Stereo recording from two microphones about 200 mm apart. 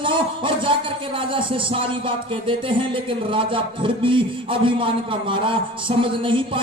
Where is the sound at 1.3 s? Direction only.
25° right (ahead or behind).